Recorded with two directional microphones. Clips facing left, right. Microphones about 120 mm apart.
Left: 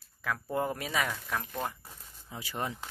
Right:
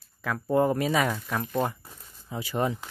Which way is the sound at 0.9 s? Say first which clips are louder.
Right 6 dB; 20° right (ahead or behind).